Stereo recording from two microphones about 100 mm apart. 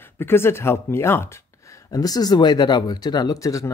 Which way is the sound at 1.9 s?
40° left (ahead or behind).